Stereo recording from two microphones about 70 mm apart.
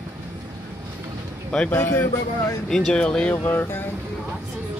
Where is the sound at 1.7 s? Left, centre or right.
Left.